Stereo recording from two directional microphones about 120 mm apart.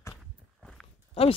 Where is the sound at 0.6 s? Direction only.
10° left (ahead or behind).